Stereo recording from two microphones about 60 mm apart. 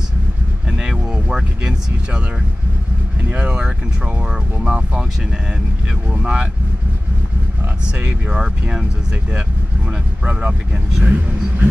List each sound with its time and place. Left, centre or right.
0.7 s a sound: centre
3.2 s speech: centre
6.0 s speech: centre
8.0 s speech: centre
10.2 s speech: right